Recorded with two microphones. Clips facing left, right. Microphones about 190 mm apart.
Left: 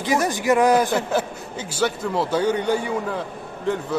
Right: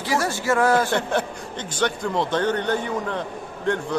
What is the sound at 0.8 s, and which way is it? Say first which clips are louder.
A man's voice: left 1 dB; 5° left (ahead or behind).